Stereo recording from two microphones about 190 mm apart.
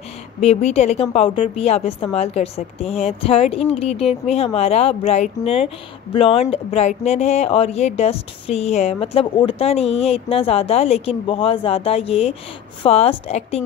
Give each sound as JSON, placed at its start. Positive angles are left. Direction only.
{"t": 0.4, "sound": "a woman's voice", "side_deg": 35}